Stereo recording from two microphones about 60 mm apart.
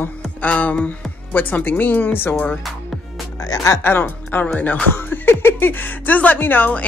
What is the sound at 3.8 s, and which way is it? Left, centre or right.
A woman's voice, left.